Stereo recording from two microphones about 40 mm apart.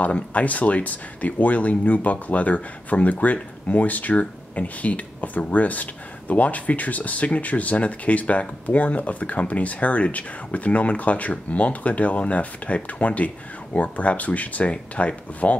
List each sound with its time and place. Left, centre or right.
0.0 s speech: left